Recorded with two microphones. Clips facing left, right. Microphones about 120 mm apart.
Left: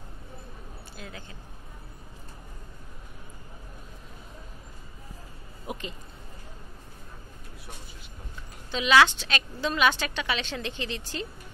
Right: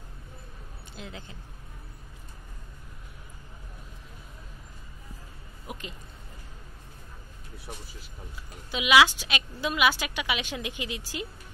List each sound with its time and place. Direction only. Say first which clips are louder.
0.9 s speech: right 2 dB; 20° right (ahead or behind)
5.7 s speech: left 4 dB; 5° right (ahead or behind)
8.7 s a woman's voice: even; 10° right (ahead or behind)